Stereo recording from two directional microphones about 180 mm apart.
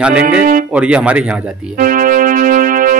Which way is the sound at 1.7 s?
50° right (ahead or behind).